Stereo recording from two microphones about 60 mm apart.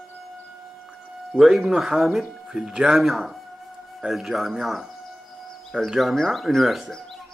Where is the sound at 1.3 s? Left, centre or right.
Centre.